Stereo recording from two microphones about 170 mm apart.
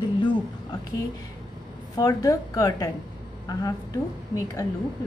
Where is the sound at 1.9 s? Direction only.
20° left (ahead or behind).